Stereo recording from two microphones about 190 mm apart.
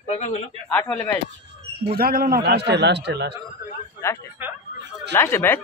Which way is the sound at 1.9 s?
50° right (ahead or behind).